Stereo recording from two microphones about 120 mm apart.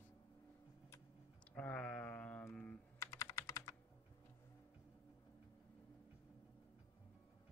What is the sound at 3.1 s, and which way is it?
Computer keyboard, 25° left (ahead or behind).